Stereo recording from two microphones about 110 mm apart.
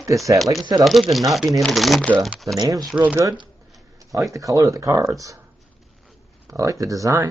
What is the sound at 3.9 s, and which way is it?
Speech, 30° right (ahead or behind).